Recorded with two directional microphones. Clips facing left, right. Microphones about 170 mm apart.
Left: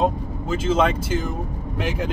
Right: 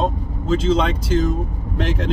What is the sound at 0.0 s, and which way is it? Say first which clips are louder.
Speech: left 1 dB; 10° left (ahead or behind).